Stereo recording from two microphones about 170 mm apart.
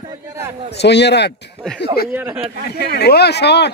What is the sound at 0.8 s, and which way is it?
Speech, 85° left.